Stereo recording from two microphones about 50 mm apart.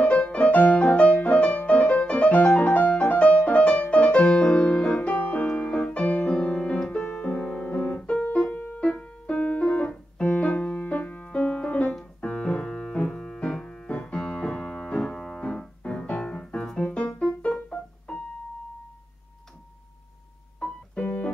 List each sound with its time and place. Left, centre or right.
0.0 s music: left
8.1 s piano: left
8.8 s keyboard: centre
10.1 s music: left
12.0 s piano: centre
14.0 s music: centre
15.1 s piano: centre
15.4 s music: centre
16.9 s piano: centre
20.6 s keyboard: left